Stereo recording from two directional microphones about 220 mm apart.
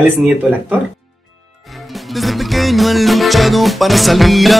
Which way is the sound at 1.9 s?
Centre (ahead or behind).